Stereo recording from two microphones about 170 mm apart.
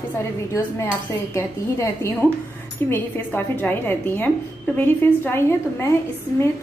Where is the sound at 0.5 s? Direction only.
15° left (ahead or behind).